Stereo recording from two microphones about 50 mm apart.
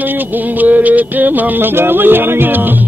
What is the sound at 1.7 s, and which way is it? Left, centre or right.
Music, right.